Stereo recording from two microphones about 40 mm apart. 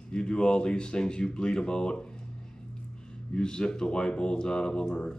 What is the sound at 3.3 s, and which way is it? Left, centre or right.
Speech, left.